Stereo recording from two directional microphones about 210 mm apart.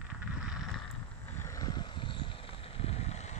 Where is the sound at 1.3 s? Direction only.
15° left (ahead or behind).